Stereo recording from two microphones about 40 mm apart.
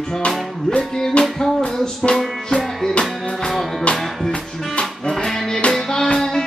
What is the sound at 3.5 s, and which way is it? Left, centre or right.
Music, centre.